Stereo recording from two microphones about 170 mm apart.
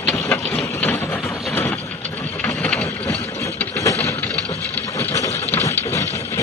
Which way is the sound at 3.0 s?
15° left (ahead or behind).